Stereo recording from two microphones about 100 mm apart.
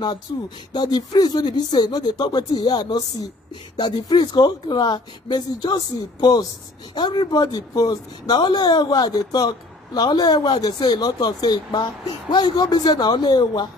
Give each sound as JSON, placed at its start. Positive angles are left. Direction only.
{"t": 0.7, "sound": "speech", "side_deg": 45}
{"t": 7.0, "sound": "speech", "side_deg": 50}